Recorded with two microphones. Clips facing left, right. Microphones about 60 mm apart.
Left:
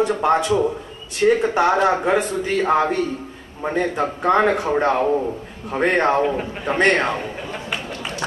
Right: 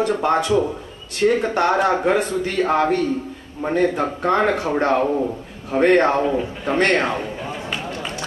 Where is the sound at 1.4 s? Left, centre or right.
Centre.